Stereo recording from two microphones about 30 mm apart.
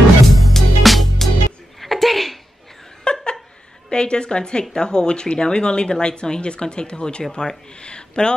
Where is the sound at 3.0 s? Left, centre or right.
Left.